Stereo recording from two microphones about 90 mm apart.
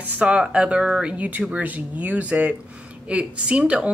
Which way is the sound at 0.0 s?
15° right (ahead or behind).